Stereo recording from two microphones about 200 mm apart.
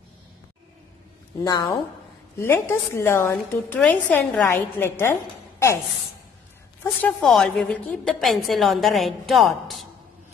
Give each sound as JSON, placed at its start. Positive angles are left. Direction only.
{"t": 1.4, "sound": "a woman's voice", "side_deg": 20}
{"t": 5.2, "sound": "a sound", "side_deg": 15}
{"t": 6.8, "sound": "a woman's voice", "side_deg": 10}